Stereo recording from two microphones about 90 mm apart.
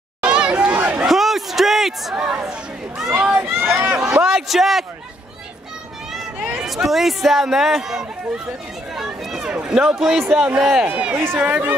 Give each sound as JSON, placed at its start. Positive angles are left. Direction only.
{"t": 0.2, "sound": "chatter", "side_deg": -10}
{"t": 1.0, "sound": "chatter", "side_deg": -5}
{"t": 3.0, "sound": "a sound", "side_deg": -10}
{"t": 4.2, "sound": "a man's voice", "side_deg": -5}
{"t": 6.6, "sound": "speech", "side_deg": -5}
{"t": 11.1, "sound": "speech", "side_deg": -25}